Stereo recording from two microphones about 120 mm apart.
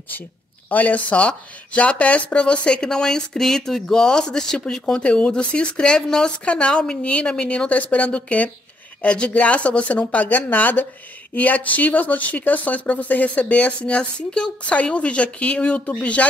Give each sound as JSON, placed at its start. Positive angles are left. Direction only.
{"t": 0.7, "sound": "speech", "side_deg": 10}